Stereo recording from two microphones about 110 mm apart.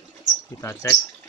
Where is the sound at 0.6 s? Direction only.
30° left (ahead or behind).